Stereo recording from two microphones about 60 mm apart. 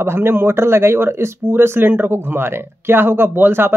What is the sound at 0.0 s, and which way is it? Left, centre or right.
Speech, right.